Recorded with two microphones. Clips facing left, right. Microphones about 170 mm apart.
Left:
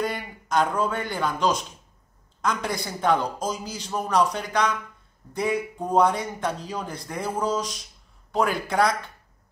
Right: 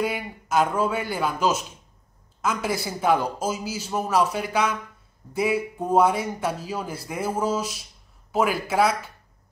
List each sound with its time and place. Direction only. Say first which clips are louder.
0.0 s a man's voice: right 2 dB; 5° right (ahead or behind)